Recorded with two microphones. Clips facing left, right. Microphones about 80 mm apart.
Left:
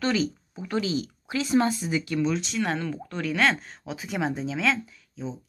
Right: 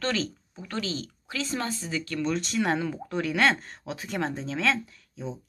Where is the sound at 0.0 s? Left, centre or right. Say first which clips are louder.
Left 4 dB; centre.